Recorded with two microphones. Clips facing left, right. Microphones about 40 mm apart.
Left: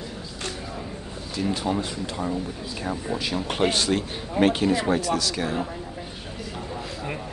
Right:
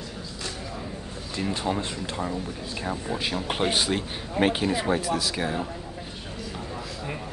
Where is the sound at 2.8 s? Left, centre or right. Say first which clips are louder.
Left 1 dB; centre.